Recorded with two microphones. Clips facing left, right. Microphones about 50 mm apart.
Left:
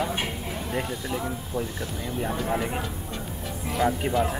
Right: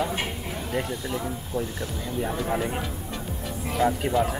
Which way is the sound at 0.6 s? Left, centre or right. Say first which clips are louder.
Right 1 dB; centre.